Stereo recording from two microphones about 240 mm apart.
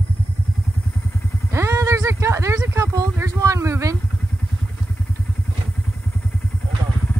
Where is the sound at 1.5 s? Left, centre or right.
Centre.